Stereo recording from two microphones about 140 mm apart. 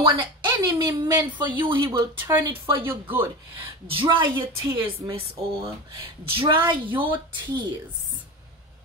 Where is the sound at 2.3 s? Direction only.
20° right (ahead or behind).